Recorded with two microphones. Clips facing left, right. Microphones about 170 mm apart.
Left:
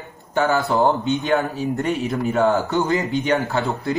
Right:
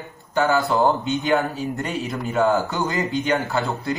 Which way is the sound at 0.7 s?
20° left (ahead or behind).